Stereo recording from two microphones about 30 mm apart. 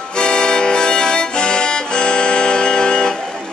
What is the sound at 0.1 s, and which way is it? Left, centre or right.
Accordion, left.